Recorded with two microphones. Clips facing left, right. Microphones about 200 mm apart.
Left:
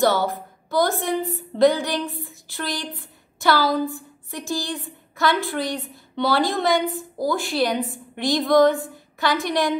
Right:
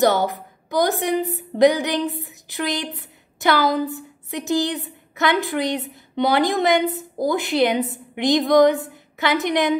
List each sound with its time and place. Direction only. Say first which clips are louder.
0.0 s a woman's voice: right 2 dB; 20° right (ahead or behind)